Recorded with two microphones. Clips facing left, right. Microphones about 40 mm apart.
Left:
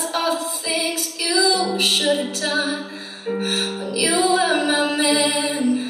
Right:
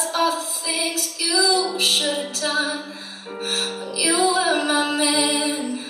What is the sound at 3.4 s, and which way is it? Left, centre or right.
Music, left.